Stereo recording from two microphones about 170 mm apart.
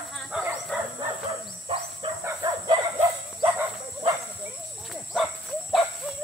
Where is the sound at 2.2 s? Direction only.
25° right (ahead or behind).